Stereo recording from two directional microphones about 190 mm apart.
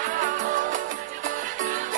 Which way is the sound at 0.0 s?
45° right (ahead or behind).